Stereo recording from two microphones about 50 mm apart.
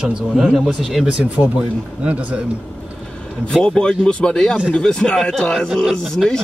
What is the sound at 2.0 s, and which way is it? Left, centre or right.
Speech, right.